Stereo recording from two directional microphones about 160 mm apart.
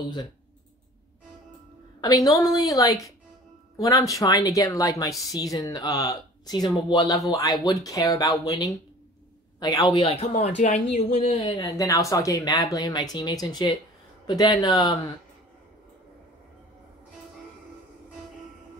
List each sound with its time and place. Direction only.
2.0 s speech: 25° left (ahead or behind)
10.0 s speech: 40° left (ahead or behind)
11.5 s speech: 20° left (ahead or behind)